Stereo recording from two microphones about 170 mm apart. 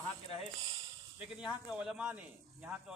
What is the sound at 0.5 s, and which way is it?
Speech, 35° right (ahead or behind).